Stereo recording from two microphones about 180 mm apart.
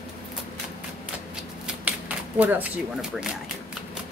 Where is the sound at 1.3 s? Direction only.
5° right (ahead or behind).